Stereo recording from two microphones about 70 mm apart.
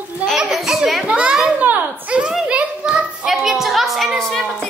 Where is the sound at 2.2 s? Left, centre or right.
Centre.